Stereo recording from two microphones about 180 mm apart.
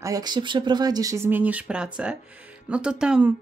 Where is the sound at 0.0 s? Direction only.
20° right (ahead or behind); by 3.3 s 5° right (ahead or behind).